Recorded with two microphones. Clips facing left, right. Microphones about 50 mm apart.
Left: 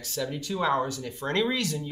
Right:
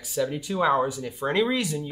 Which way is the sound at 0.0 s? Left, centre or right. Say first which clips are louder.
Right 5 dB; centre.